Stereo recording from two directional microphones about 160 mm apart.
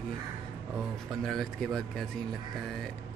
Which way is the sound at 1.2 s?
Centre (ahead or behind).